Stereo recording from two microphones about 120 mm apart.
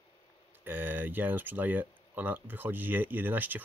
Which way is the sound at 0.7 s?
15° right (ahead or behind).